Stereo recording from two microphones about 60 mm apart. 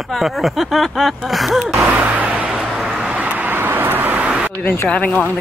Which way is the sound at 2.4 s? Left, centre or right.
Centre.